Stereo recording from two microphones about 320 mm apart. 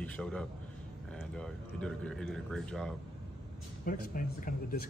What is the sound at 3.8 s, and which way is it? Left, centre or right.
Speech, left.